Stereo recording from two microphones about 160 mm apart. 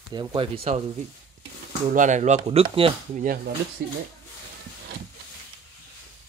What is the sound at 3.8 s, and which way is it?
Speech, 80° right.